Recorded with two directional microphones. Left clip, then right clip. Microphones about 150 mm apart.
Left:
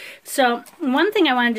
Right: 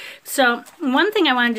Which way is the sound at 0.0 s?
Centre (ahead or behind).